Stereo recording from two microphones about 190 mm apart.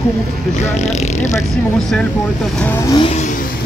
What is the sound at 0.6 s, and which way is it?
Speech, 35° left (ahead or behind).